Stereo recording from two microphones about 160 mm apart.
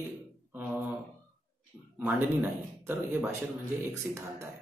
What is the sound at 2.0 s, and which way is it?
Speech, 10° right (ahead or behind).